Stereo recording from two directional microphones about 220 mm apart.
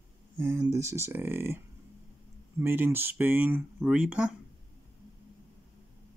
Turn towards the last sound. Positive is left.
turn(degrees=-5)  # may be behind; listen again after turning